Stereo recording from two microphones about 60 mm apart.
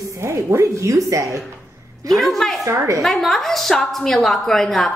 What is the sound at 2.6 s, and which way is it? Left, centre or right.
Speech, right.